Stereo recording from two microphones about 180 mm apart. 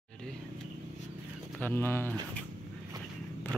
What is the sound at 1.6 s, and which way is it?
Speech, 10° left (ahead or behind).